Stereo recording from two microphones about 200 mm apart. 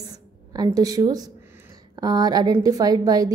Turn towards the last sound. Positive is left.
turn(degrees=-20)  # may be behind; listen again after turning